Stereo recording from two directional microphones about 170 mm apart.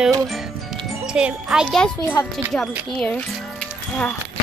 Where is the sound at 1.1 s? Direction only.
5° right (ahead or behind).